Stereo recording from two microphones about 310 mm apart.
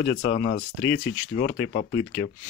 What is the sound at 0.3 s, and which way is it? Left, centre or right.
Speech, left.